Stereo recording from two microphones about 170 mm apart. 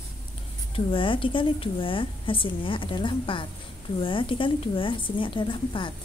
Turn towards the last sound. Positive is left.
turn(degrees=30)  # may be behind; listen again after turning